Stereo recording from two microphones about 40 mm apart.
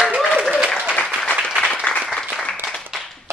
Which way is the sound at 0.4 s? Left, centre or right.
Centre.